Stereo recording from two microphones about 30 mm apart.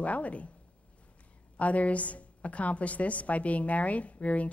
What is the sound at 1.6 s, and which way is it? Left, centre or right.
A woman's voice, left.